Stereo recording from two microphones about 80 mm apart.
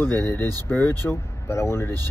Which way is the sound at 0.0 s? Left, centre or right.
Left.